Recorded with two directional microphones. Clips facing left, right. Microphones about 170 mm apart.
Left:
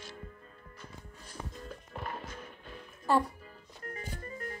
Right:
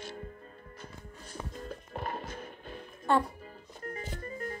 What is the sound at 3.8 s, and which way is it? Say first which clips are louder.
Music: right 3 dB; 30° right (ahead or behind).